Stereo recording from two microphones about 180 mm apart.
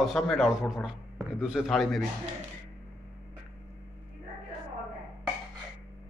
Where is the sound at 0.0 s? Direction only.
Centre (ahead or behind).